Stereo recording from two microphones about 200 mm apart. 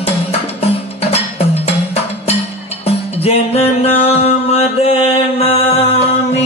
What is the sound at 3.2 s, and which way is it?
Mantra, 30° left (ahead or behind).